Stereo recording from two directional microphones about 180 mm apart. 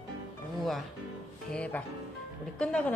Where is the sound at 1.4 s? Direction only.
5° left (ahead or behind).